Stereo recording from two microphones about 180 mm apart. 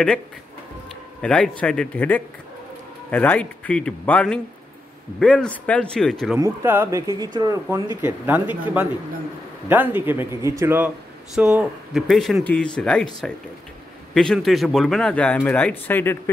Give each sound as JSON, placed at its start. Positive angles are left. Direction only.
{"t": 1.2, "sound": "a man's voice", "side_deg": 5}
{"t": 6.3, "sound": "a man's voice", "side_deg": -15}
{"t": 11.3, "sound": "speech", "side_deg": -5}